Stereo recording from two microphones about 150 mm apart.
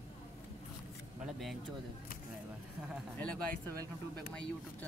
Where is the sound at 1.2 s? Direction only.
Centre (ahead or behind).